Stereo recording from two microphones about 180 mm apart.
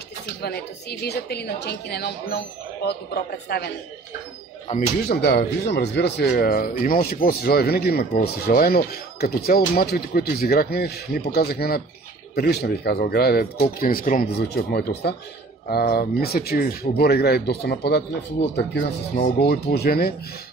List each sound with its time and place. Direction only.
0.4 s speech: 65° left (ahead or behind)
4.7 s speech: 40° left (ahead or behind)
5.0 s speech: 65° left (ahead or behind)
18.9 s speech: 50° left (ahead or behind)